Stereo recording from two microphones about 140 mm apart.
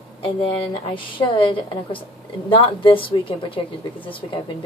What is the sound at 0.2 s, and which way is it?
A woman's voice, 40° left (ahead or behind).